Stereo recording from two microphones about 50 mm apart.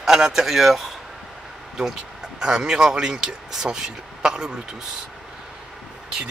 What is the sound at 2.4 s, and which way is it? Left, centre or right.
Speech, centre.